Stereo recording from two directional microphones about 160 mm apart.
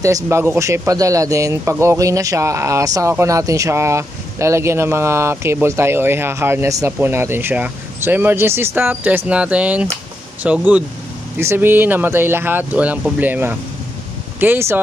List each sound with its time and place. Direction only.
0.0 s speech: 20° right (ahead or behind)